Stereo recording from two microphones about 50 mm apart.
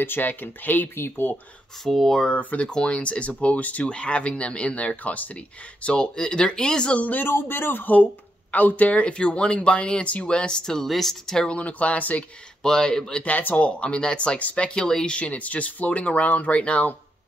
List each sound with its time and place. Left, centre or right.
0.0 s speech: left
1.9 s speech: centre
2.2 s speech: left
7.0 s speech: left
7.2 s speech: left; by 11.4 s centre
11.4 s speech: left
12.6 s speech: centre
13.2 s speech: left
14.9 s speech: centre
15.1 s speech: left